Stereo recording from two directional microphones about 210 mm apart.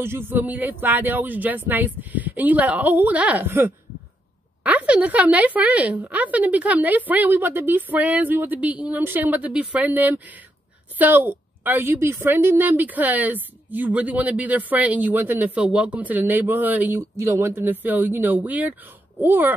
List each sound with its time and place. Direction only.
0.0 s a woman's voice: 10° right (ahead or behind)